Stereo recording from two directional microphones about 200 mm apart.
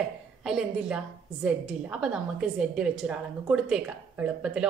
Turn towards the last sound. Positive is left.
turn(degrees=-5)  # may be behind; listen again after turning